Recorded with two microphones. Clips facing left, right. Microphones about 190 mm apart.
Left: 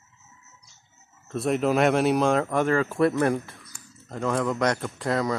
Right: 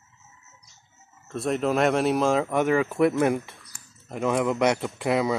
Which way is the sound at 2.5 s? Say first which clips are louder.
Right 1 dB; 15° right (ahead or behind).